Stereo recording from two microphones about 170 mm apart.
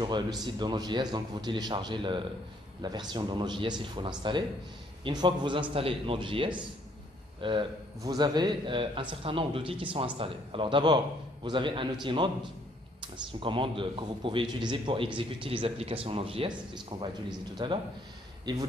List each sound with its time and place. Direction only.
0.0 s a man's voice: 25° right (ahead or behind)